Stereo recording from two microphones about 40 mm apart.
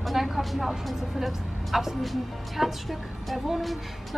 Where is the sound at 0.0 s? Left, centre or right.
Centre.